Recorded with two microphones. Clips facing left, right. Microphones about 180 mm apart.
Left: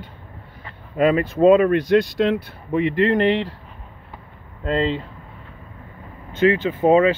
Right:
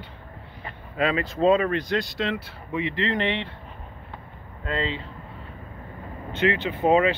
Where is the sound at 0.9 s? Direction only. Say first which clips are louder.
Left 7 dB; 55° left (ahead or behind).